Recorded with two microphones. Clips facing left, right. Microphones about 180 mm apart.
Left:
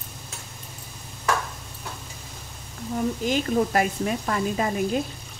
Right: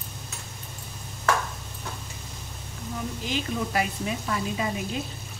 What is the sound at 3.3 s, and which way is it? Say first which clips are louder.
A woman's voice: left 5 dB; 45° left (ahead or behind).